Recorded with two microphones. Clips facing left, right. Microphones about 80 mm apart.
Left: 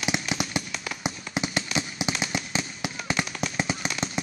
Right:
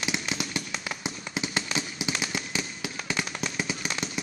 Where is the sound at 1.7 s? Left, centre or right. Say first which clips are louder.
Left 2 dB; left.